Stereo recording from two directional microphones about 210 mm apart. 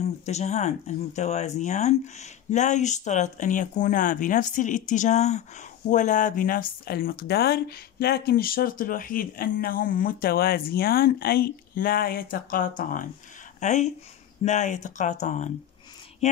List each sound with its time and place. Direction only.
0.0 s speech: 30° left (ahead or behind)